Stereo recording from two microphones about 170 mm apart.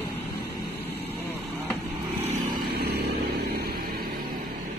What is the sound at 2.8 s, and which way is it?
Vehicle, 65° right (ahead or behind).